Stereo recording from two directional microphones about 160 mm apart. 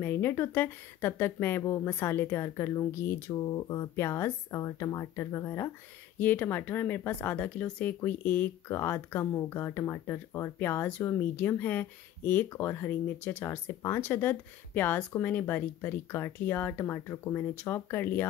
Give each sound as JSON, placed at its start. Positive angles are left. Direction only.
{"t": 0.0, "sound": "speech", "side_deg": 15}